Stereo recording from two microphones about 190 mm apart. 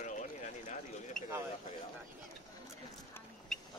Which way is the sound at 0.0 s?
40° left (ahead or behind).